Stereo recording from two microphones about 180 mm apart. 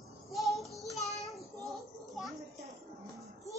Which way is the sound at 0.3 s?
Centre (ahead or behind).